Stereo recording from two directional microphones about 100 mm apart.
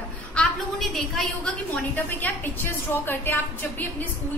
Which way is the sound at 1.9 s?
20° left (ahead or behind).